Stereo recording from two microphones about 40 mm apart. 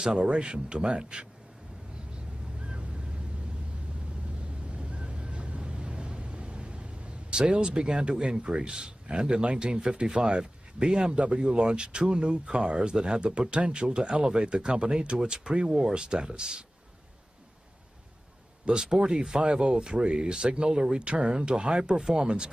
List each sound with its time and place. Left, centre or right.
0.2 s speech: right
2.6 s a sound: right
4.7 s vehicle: right
18.7 s speech: right